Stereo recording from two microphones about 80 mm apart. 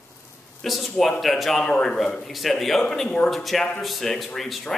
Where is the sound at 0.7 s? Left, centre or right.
Centre.